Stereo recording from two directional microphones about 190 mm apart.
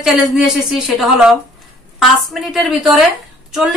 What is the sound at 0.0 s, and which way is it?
A woman's voice, centre (ahead or behind).